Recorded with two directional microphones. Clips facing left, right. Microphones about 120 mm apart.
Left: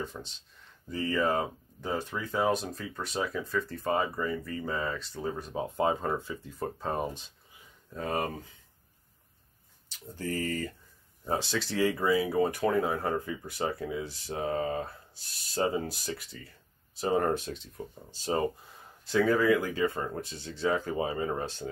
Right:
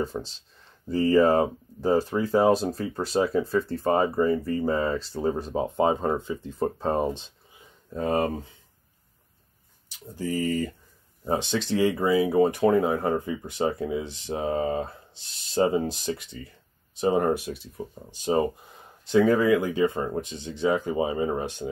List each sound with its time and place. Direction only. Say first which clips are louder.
0.0 s speech: right 8 dB; 35° right (ahead or behind)
9.8 s speech: right 4 dB; 15° right (ahead or behind)